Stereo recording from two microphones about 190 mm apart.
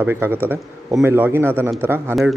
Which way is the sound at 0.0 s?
10° right (ahead or behind).